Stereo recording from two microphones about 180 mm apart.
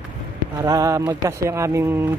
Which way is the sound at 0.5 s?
20° right (ahead or behind).